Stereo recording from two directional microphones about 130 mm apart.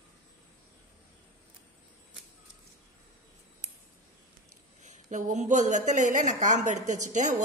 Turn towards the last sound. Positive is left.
turn(degrees=-70)  # may be behind; listen again after turning